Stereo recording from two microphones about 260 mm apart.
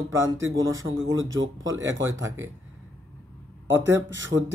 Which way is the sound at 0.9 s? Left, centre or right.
Right.